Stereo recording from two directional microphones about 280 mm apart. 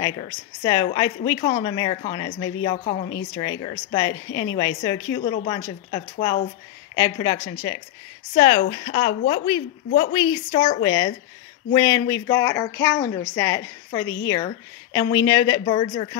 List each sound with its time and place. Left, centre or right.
0.0 s a woman's voice: centre